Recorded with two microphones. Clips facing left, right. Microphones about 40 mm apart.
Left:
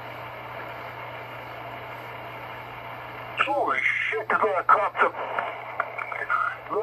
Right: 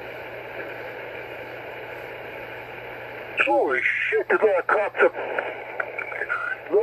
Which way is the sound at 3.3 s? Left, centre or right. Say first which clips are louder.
Right 3 dB; centre.